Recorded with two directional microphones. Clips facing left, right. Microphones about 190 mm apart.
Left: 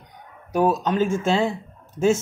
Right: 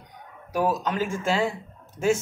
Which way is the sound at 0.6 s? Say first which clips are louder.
Left 5 dB; 25° left (ahead or behind).